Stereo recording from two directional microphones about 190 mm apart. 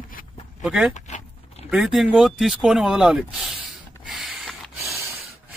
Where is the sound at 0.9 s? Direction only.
40° left (ahead or behind).